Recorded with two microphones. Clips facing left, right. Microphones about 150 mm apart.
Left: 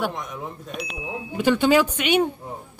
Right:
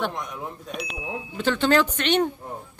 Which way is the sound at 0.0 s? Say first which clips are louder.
Left 1 dB; centre (ahead or behind).